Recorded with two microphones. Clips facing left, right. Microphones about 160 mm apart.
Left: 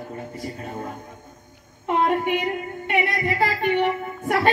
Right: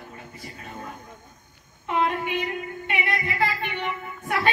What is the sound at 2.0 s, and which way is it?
Music, 45° left (ahead or behind).